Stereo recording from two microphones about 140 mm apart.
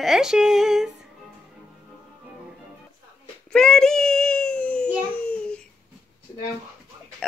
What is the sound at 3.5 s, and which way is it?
Child singing, 5° left (ahead or behind).